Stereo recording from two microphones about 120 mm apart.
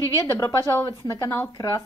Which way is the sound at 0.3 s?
25° left (ahead or behind).